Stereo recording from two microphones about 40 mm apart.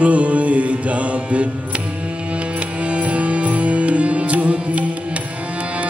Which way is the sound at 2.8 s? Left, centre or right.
Right.